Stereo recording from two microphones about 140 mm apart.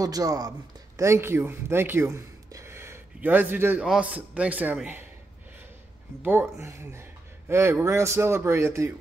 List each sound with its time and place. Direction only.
0.0 s a man's voice: 25° right (ahead or behind)
6.2 s speech: 15° right (ahead or behind)